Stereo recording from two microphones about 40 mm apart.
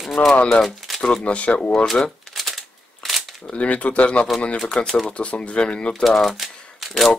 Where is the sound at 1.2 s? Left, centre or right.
Left.